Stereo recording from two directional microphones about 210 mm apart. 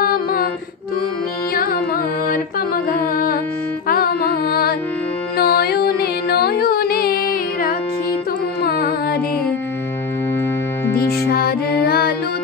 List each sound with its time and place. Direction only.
0.0 s music: 45° left (ahead or behind)
1.5 s carnatic music: 45° left (ahead or behind)
2.2 s music: 45° left (ahead or behind)
11.0 s music: 45° left (ahead or behind)